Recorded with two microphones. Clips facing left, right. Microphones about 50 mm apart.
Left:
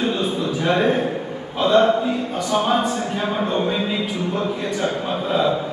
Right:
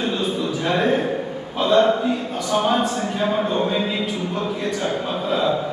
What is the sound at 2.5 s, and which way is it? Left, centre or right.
A man's voice, centre.